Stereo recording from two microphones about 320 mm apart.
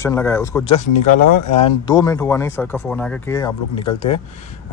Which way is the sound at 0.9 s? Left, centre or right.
Left.